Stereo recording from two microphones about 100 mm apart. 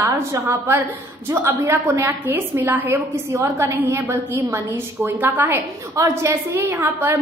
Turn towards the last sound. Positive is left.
turn(degrees=-20)  # may be behind; listen again after turning